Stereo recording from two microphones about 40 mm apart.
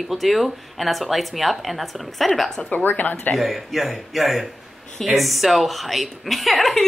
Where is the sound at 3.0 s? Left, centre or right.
Left.